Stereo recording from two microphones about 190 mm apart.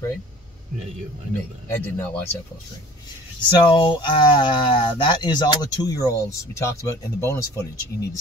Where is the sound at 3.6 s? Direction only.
25° left (ahead or behind).